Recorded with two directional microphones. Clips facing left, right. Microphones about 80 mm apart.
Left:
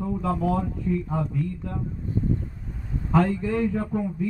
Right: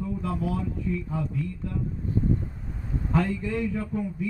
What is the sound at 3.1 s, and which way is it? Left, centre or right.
Speech, left.